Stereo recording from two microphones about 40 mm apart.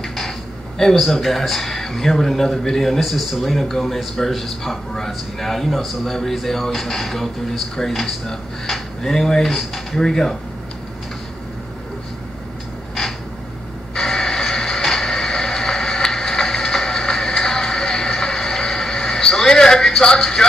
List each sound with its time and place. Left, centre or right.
0.0 s a sound: centre
0.9 s a man's voice: centre
13.9 s music: centre
20.2 s speech: centre